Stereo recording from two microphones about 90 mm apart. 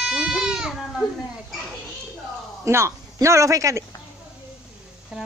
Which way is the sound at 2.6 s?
30° right (ahead or behind).